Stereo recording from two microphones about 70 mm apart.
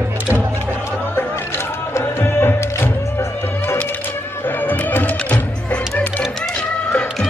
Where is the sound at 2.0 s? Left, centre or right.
Left.